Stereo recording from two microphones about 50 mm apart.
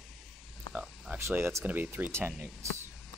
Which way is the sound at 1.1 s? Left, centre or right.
Right.